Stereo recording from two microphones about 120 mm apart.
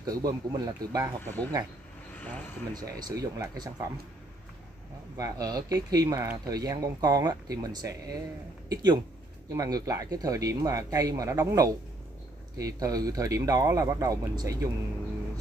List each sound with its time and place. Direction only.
0.0 s speech: 30° right (ahead or behind)
1.2 s speech: 15° left (ahead or behind)
2.1 s a sound: 15° left (ahead or behind)
2.7 s speech: 35° right (ahead or behind)
5.1 s speech: 30° right (ahead or behind)